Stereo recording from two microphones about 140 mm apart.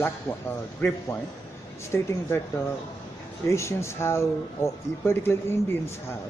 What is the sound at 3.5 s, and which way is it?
Speech, 20° left (ahead or behind).